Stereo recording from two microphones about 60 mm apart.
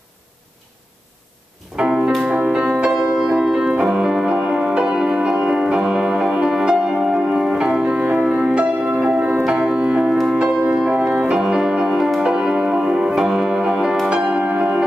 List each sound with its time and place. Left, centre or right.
1.8 s music: centre
8.8 s music: right
9.5 s music: centre
10.8 s music: centre